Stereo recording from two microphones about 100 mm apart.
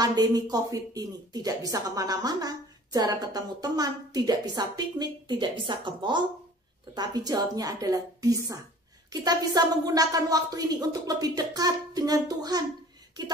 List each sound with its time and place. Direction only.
0.0 s a woman's voice: 40° right (ahead or behind)